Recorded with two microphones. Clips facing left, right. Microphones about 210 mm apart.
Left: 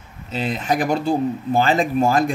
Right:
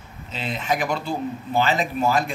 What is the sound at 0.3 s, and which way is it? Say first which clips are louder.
Speech: left 4 dB; 40° left (ahead or behind).